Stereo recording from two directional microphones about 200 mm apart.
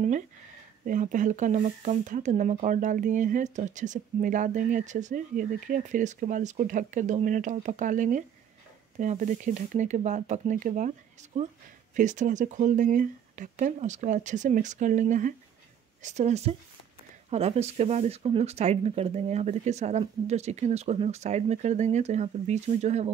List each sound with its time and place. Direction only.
0.8 s speech: 40° right (ahead or behind)